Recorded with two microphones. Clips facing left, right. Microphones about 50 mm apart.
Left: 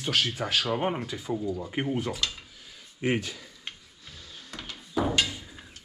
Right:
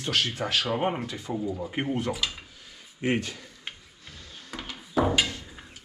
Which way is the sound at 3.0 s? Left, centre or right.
Right.